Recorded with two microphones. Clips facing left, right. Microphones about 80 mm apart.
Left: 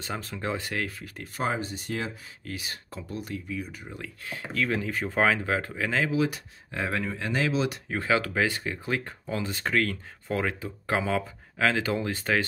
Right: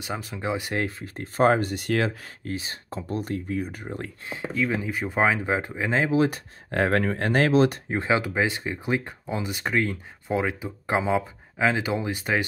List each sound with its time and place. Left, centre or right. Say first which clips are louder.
0.0 s speech: right 2 dB; centre
0.7 s speech: right 4 dB; right
1.5 s speech: right 8 dB; right
2.4 s speech: right 5 dB; right
4.3 s speech: right 2 dB; centre; by 6.4 s right
6.7 s speech: right 7 dB; right
7.9 s speech: right 2 dB; right